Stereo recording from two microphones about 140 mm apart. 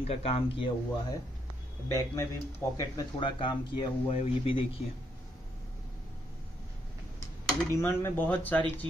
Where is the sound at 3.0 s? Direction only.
35° left (ahead or behind).